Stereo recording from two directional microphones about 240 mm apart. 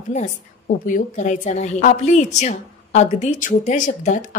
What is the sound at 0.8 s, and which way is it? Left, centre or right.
A woman's voice, left.